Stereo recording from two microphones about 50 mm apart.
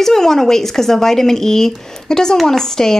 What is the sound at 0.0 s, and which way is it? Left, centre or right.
Speech, centre.